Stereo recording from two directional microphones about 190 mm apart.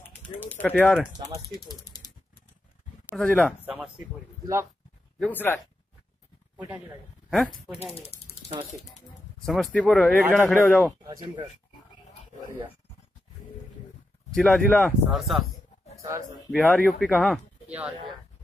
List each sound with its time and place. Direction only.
0.5 s speech: 10° left (ahead or behind)
1.7 s mechanisms: 20° left (ahead or behind)
3.2 s speech: 5° left (ahead or behind)
3.6 s speech: 5° right (ahead or behind)
5.2 s speech: 10° left (ahead or behind)
7.2 s speech: centre (ahead or behind)
7.8 s speech: 30° left (ahead or behind)
9.5 s speech: 5° left (ahead or behind)
10.9 s speech: 20° right (ahead or behind)
14.3 s speech: 5° left (ahead or behind)
16.0 s speech: 15° right (ahead or behind)
16.7 s speech: 10° left (ahead or behind)
17.6 s speech: 5° right (ahead or behind)